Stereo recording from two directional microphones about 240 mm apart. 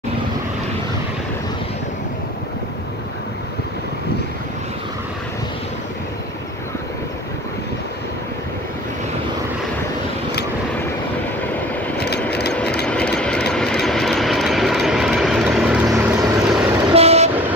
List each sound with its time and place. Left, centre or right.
12.8 s engine: centre
15.9 s vehicle: centre
16.9 s train: right